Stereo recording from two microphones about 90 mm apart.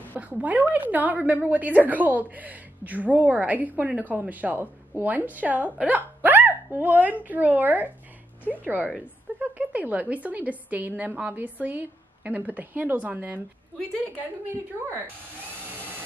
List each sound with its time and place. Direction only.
0.1 s a woman's voice: 20° right (ahead or behind)